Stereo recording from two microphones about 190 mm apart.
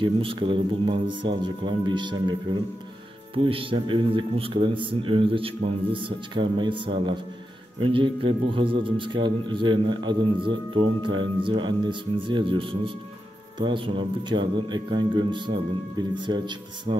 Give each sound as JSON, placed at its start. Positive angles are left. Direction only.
{"t": 0.0, "sound": "a man's voice", "side_deg": -25}